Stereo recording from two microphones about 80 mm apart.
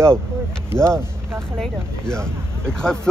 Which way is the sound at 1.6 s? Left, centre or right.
Centre.